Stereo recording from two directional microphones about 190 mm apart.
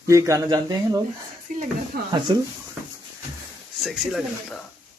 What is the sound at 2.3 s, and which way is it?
Speech, 25° right (ahead or behind).